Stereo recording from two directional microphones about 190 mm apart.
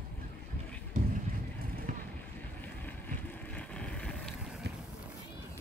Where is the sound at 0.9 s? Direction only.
45° right (ahead or behind).